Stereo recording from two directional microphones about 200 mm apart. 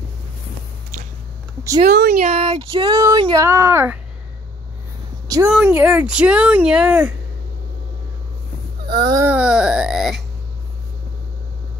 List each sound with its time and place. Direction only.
1.9 s speech: 55° right (ahead or behind)
2.2 s speech: 25° right (ahead or behind); by 4.0 s 10° right (ahead or behind)
5.5 s speech: 5° right (ahead or behind)
8.8 s a sound: 20° right (ahead or behind); by 10.2 s centre (ahead or behind)